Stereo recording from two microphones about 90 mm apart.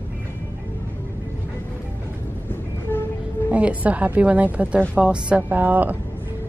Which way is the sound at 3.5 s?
15° right (ahead or behind).